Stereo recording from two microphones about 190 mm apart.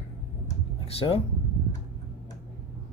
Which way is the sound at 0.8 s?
30° left (ahead or behind).